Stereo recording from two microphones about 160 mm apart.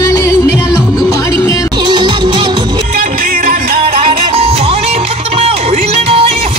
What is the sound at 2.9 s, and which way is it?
Music, 55° right (ahead or behind).